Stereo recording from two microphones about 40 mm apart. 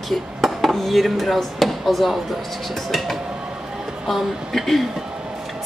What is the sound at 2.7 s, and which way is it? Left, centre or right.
Speech, centre.